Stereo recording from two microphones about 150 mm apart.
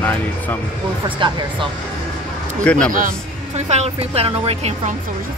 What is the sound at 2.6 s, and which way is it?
Speech, 10° left (ahead or behind).